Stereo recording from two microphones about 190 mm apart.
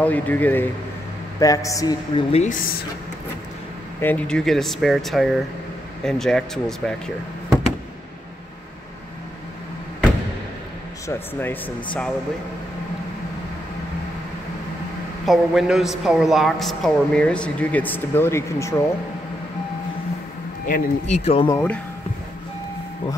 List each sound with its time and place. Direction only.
0.0 s speech: 10° left (ahead or behind)
2.3 s a woman's voice: 40° left (ahead or behind)
4.0 s speech: 5° left (ahead or behind)
11.1 s speech: 10° left (ahead or behind)
15.2 s speech: centre (ahead or behind); by 18.9 s 15° left (ahead or behind)
20.6 s speech: 50° left (ahead or behind)
21.5 s speech: 15° left (ahead or behind)